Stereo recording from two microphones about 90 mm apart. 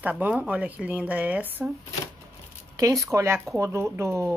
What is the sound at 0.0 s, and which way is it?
Speech, 15° right (ahead or behind).